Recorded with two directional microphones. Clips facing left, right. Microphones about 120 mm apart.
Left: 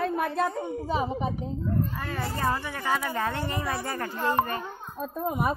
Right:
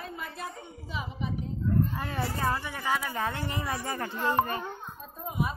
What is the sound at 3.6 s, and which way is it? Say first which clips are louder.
Speech: left 2 dB; 15° right (ahead or behind).